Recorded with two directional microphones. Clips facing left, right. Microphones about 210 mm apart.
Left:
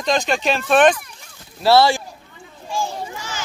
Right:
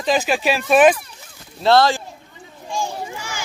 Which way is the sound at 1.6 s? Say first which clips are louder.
Left 1 dB; 10° left (ahead or behind).